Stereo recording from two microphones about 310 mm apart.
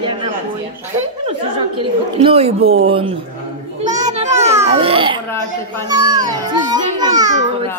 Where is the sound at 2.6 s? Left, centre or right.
Right.